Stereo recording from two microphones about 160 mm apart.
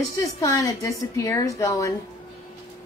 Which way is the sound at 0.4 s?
20° left (ahead or behind).